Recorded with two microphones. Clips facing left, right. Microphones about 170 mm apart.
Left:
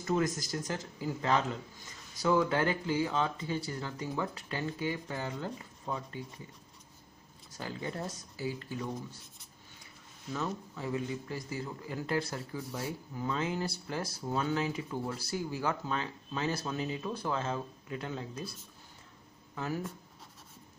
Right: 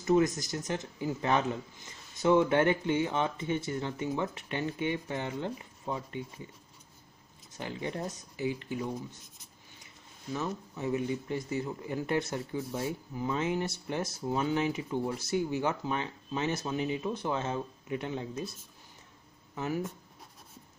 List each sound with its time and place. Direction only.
0.0 s speech: 20° right (ahead or behind)
7.5 s speech: 20° right (ahead or behind)
10.3 s speech: 20° right (ahead or behind)
19.5 s speech: 20° right (ahead or behind)